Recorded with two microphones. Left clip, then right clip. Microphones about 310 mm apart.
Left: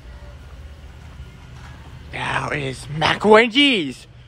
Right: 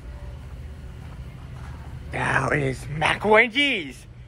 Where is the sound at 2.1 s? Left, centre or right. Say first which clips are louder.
Right 1 dB; centre.